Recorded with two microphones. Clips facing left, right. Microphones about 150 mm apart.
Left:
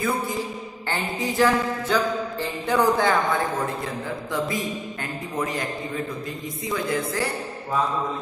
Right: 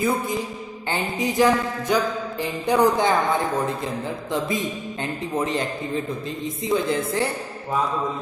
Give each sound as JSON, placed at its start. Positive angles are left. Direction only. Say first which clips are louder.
{"t": 1.2, "sound": "a sound", "louder": "right 2 dB", "side_deg": -15}
{"t": 2.4, "sound": "speech", "louder": "right 3 dB", "side_deg": -15}
{"t": 5.3, "sound": "speech", "louder": "right 3 dB", "side_deg": -25}
{"t": 6.7, "sound": "speech", "louder": "right 3 dB", "side_deg": -25}